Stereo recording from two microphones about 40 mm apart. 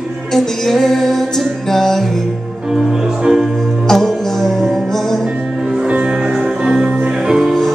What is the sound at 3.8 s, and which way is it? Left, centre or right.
Music, centre.